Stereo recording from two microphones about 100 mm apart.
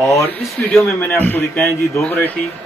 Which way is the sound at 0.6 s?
15° left (ahead or behind).